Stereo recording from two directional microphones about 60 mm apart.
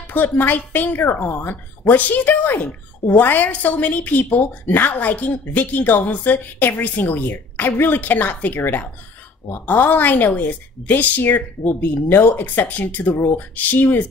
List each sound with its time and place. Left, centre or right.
0.1 s a woman's voice: left